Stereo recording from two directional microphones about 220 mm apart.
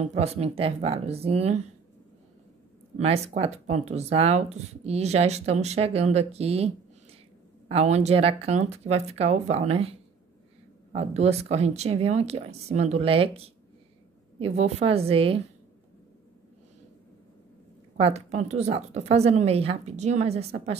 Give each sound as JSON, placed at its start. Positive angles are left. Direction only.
{"t": 0.0, "sound": "speech", "side_deg": -30}
{"t": 3.0, "sound": "speech", "side_deg": -30}
{"t": 17.9, "sound": "speech", "side_deg": -30}